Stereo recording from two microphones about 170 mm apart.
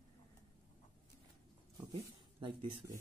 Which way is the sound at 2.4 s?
30° right (ahead or behind).